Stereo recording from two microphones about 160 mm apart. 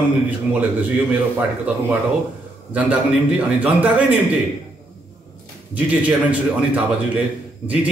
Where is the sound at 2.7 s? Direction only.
10° right (ahead or behind).